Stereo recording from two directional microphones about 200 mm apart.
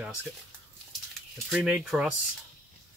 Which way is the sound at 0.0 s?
5° right (ahead or behind).